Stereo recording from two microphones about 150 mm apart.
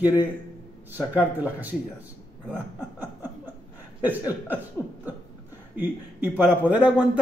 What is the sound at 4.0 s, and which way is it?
Speech, 10° right (ahead or behind).